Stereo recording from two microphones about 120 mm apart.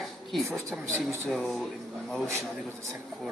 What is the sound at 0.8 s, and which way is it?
Speech, 20° right (ahead or behind).